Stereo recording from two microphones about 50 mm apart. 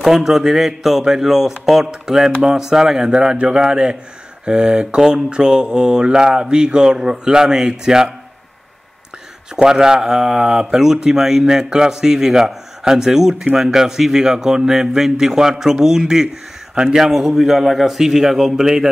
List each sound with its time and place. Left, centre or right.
0.0 s speech: centre
9.6 s speech: centre